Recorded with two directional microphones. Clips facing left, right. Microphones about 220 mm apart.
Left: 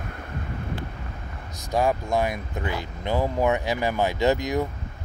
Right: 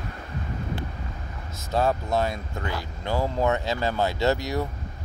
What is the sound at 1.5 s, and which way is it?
Speech, 15° left (ahead or behind).